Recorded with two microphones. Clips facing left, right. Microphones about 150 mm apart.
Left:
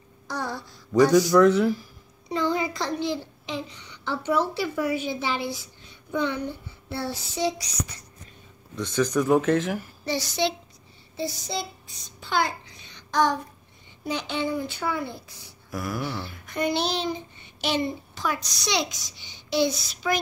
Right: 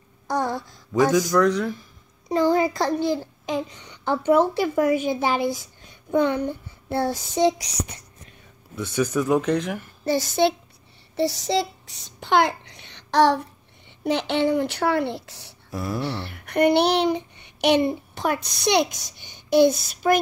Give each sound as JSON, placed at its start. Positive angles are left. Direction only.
{"t": 0.3, "sound": "a sound", "side_deg": -50}
{"t": 1.3, "sound": "speech", "side_deg": 5}
{"t": 2.2, "sound": "a child's voice", "side_deg": -45}
{"t": 6.1, "sound": "child singing", "side_deg": -50}
{"t": 7.7, "sound": "child singing", "side_deg": -65}
{"t": 8.7, "sound": "speech", "side_deg": -10}
{"t": 10.0, "sound": "a child's voice", "side_deg": -50}
{"t": 11.1, "sound": "a child's voice", "side_deg": -80}
{"t": 15.7, "sound": "speech", "side_deg": -30}
{"t": 16.0, "sound": "child singing", "side_deg": -70}